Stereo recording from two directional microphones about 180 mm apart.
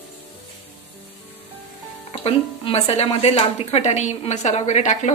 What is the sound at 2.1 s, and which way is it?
A woman's voice, 35° left (ahead or behind).